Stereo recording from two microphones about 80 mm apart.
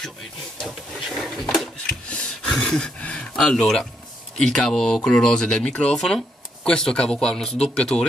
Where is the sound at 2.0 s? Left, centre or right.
Centre.